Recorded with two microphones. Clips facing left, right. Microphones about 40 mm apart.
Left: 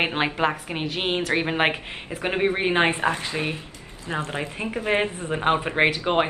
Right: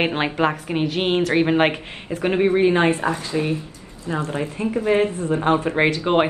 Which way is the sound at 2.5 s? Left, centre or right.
Left.